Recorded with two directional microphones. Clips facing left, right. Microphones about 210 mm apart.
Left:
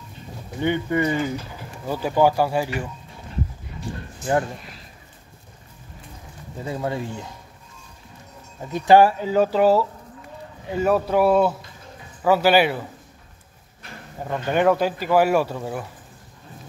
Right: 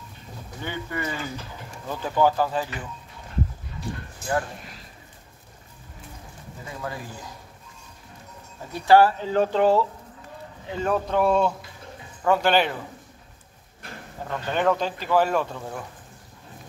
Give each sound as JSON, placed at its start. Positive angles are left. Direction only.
{"t": 0.6, "sound": "speech", "side_deg": 20}
{"t": 6.6, "sound": "speech", "side_deg": 25}
{"t": 8.7, "sound": "speech", "side_deg": 15}
{"t": 14.2, "sound": "speech", "side_deg": 15}